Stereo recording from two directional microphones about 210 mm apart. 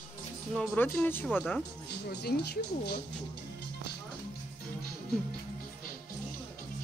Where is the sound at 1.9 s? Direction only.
50° left (ahead or behind).